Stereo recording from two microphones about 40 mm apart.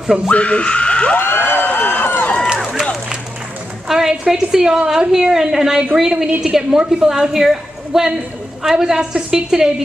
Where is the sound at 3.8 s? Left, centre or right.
Centre.